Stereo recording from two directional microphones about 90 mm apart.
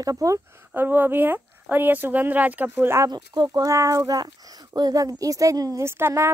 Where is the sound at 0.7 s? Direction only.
20° right (ahead or behind).